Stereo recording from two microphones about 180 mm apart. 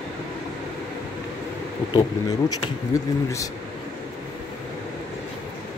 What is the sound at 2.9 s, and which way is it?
Speech, 20° left (ahead or behind).